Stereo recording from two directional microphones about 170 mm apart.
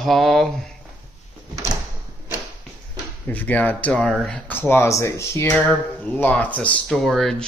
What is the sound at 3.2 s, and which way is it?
Speech, 10° left (ahead or behind).